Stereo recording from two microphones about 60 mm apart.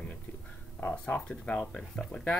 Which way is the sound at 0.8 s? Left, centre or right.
Left.